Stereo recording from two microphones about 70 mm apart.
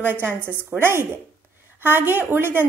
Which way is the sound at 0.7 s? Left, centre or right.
Right.